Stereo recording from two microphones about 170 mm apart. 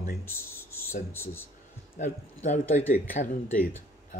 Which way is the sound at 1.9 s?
50° left (ahead or behind).